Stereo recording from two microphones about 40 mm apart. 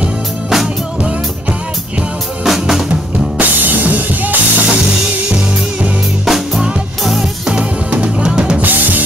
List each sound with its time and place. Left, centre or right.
2.4 s drum: centre
3.3 s drum kit: right
6.2 s music: centre
7.5 s music: right
8.5 s drum kit: right